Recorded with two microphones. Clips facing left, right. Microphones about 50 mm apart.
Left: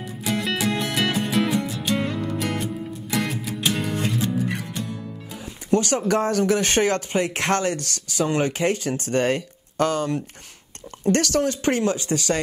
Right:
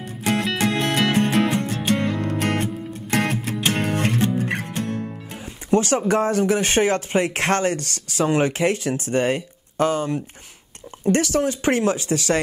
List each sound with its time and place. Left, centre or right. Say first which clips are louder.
0.2 s music: right 3 dB; right
5.8 s speech: right 3 dB; right